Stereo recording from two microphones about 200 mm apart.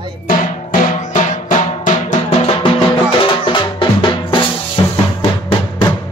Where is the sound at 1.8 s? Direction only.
35° left (ahead or behind).